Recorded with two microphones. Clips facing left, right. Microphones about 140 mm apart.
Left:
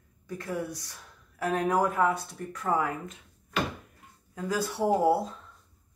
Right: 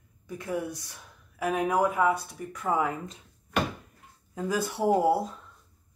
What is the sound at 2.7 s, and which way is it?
Speech, 20° right (ahead or behind).